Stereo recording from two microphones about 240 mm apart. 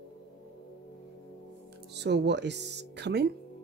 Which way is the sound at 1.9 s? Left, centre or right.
Right.